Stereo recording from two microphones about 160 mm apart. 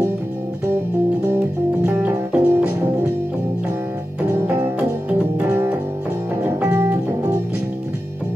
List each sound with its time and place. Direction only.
2.0 s music: 10° right (ahead or behind)
6.7 s organ: 15° right (ahead or behind)